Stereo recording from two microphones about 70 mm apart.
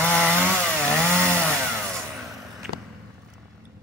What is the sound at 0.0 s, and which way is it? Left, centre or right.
Chainsaw, centre.